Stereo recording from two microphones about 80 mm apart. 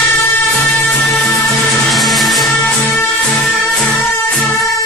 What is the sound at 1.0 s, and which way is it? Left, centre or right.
Music, centre.